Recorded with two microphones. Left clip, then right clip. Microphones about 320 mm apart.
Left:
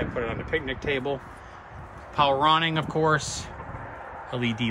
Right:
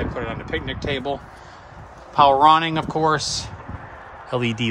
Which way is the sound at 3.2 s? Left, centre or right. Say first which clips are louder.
Right 6 dB; right.